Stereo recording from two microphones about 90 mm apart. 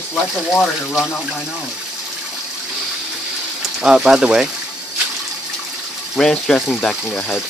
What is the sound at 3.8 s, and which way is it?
Speech, 5° right (ahead or behind).